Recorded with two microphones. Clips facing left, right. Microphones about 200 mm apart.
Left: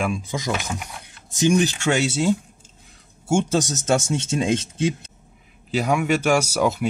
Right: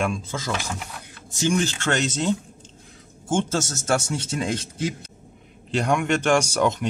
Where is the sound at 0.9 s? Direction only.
20° left (ahead or behind).